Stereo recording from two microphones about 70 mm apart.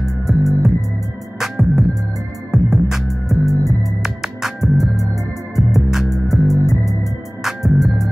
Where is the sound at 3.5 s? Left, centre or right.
Right.